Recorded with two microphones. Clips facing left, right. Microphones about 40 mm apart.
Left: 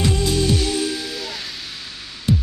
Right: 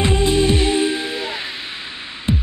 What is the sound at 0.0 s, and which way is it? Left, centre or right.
Music, right.